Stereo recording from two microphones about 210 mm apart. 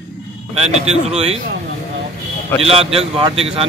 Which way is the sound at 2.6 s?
30° right (ahead or behind).